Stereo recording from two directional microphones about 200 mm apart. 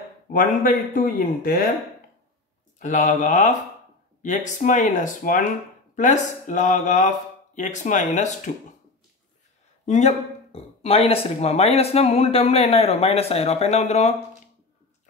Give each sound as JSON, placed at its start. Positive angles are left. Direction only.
{"t": 0.3, "sound": "a man's voice", "side_deg": 45}
{"t": 2.8, "sound": "speech", "side_deg": 40}
{"t": 9.8, "sound": "speech", "side_deg": 35}